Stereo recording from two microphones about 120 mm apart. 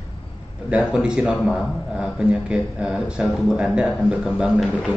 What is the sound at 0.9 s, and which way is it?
A man's voice, 5° right (ahead or behind).